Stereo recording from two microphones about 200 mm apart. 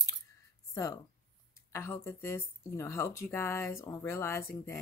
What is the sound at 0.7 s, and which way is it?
Speech, 15° left (ahead or behind).